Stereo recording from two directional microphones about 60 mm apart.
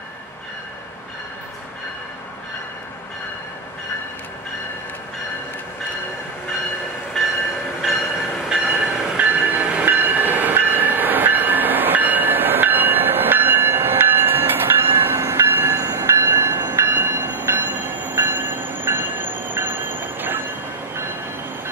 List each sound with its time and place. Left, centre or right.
8.5 s train: centre
9.2 s train: right
9.8 s train: right